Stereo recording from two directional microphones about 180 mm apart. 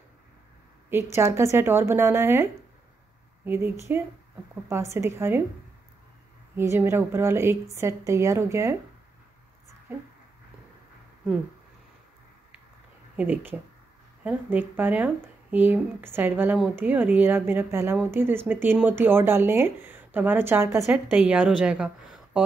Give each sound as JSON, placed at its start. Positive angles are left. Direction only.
{"t": 1.1, "sound": "speech", "side_deg": -15}
{"t": 6.5, "sound": "speech", "side_deg": -15}
{"t": 9.9, "sound": "speech", "side_deg": -10}
{"t": 13.1, "sound": "a woman's voice", "side_deg": -10}